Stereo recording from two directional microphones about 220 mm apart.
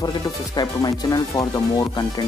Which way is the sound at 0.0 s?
20° left (ahead or behind).